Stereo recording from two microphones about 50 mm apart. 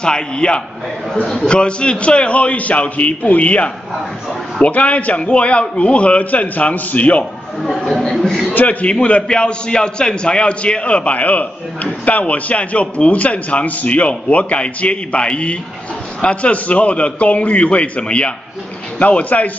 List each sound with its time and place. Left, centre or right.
0.0 s a man's voice: centre
1.2 s a man's voice: centre
1.5 s a man's voice: left
7.6 s chatter: centre
8.5 s a man's voice: left